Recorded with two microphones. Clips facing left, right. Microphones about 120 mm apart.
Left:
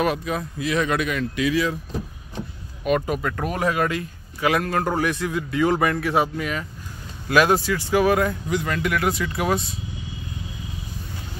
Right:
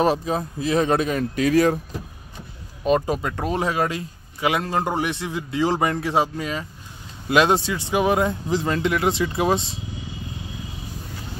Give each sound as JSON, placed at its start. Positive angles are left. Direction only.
{"t": 0.0, "sound": "speech", "side_deg": -30}
{"t": 2.8, "sound": "speech", "side_deg": -30}